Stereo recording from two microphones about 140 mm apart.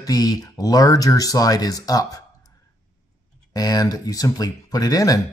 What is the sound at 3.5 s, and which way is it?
Speech, 25° left (ahead or behind).